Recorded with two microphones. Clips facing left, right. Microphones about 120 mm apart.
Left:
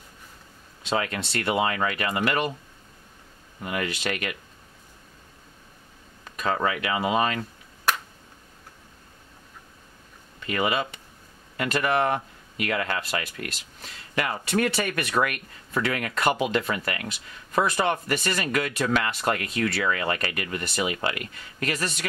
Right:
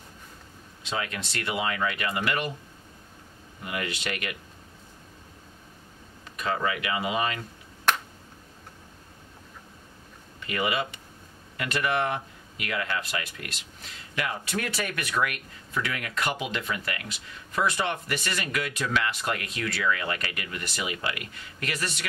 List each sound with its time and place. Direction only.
0.8 s speech: 45° left (ahead or behind)
3.6 s speech: 45° left (ahead or behind)
6.2 s speech: 45° left (ahead or behind)
10.5 s speech: 40° left (ahead or behind)